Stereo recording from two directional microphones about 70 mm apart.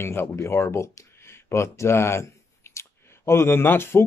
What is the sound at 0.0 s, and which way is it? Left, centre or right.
Speech, left.